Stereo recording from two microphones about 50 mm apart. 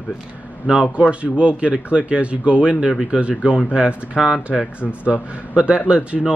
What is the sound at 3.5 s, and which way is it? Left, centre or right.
Speech, left.